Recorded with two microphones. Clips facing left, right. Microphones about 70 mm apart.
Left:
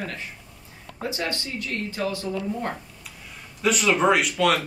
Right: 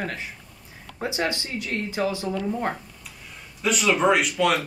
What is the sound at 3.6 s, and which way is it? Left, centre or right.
Speech, centre.